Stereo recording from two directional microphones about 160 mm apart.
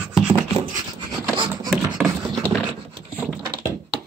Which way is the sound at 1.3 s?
30° right (ahead or behind).